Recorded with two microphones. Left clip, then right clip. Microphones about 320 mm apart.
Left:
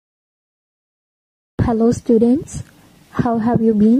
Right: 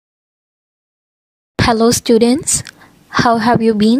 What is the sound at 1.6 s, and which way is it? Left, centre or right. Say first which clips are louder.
A woman's voice: right 5 dB; right.